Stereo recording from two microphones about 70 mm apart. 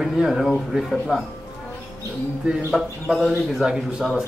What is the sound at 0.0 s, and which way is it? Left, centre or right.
Speech, centre.